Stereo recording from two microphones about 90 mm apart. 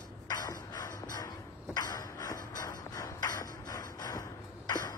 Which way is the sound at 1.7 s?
45° left (ahead or behind).